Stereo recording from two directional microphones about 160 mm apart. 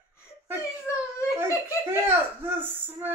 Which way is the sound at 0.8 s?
15° left (ahead or behind).